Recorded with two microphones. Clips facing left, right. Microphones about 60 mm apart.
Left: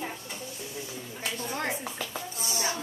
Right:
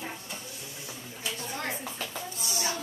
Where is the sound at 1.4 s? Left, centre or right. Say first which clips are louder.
Left 4 dB; left.